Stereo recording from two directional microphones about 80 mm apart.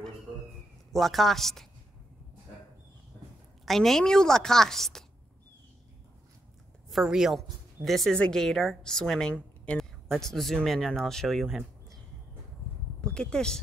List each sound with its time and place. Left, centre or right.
0.9 s a woman's voice: centre
3.6 s a woman's voice: centre
6.9 s a woman's voice: centre
13.0 s speech: centre